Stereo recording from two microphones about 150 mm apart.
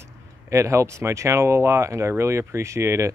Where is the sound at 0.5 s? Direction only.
20° right (ahead or behind).